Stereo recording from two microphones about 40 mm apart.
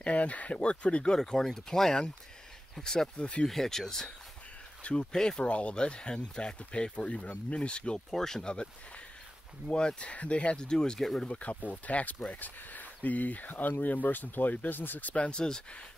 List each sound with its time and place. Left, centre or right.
0.0 s speech: left
1.1 s speech: centre
3.2 s speech: left
3.4 s speech: centre
5.1 s speech: centre
5.4 s speech: left
8.1 s speech: centre
8.5 s speech: left
11.2 s speech: left
15.0 s speech: left